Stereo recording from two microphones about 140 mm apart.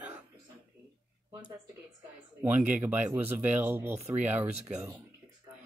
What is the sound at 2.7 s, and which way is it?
Speech, 10° right (ahead or behind).